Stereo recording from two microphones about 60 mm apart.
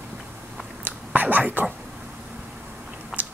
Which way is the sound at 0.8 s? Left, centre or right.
Right.